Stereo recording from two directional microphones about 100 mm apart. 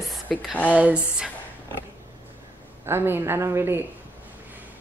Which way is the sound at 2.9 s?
25° right (ahead or behind).